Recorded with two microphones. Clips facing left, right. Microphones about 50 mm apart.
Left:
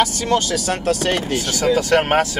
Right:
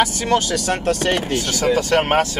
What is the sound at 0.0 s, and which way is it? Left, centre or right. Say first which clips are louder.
Speech: even; centre.